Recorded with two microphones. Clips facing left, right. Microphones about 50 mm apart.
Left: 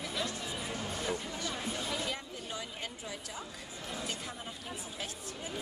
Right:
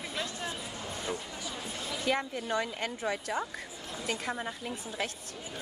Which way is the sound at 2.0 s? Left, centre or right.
Right.